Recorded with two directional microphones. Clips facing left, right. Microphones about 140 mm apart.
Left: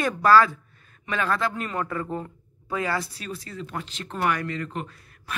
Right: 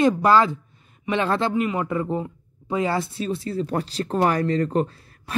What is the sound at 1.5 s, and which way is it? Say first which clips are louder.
A man's voice: right 6 dB; 15° right (ahead or behind).